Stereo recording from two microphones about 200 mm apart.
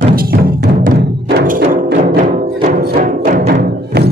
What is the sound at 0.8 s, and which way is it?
Music, 50° right (ahead or behind).